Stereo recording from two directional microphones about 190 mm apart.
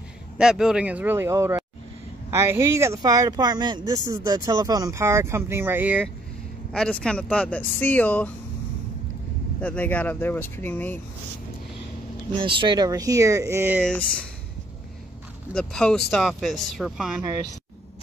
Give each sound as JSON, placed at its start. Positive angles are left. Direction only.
{"t": 0.4, "sound": "speech", "side_deg": -5}
{"t": 6.7, "sound": "speech", "side_deg": 5}
{"t": 9.6, "sound": "speech", "side_deg": 10}
{"t": 12.4, "sound": "speech", "side_deg": -25}
{"t": 15.5, "sound": "speech", "side_deg": 5}